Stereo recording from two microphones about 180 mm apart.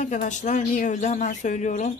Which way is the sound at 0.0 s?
45° left (ahead or behind).